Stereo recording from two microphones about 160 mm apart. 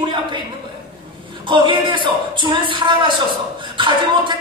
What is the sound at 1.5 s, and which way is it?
Speech, 30° right (ahead or behind).